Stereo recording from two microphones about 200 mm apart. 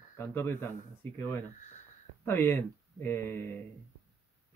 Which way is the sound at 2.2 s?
10° left (ahead or behind).